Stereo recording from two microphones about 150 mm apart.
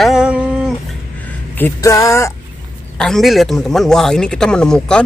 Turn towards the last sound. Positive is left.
turn(degrees=5)  # may be behind; listen again after turning